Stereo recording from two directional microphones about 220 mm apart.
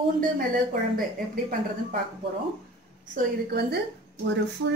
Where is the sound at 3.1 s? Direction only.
45° right (ahead or behind).